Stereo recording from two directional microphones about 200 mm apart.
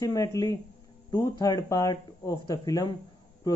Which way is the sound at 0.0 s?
15° left (ahead or behind).